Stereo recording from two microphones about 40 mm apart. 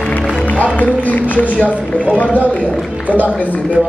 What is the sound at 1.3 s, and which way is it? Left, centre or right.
A man's voice, left.